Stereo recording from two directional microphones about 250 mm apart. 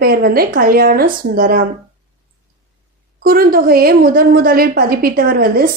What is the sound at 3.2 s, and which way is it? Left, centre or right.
A woman's voice, right.